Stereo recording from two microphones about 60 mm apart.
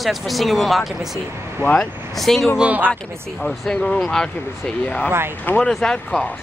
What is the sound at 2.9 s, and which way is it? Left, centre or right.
Speech, centre.